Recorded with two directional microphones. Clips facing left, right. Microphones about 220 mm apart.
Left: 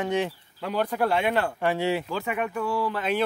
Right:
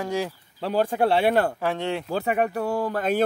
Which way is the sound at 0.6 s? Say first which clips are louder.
Right 3 dB; 30° right (ahead or behind).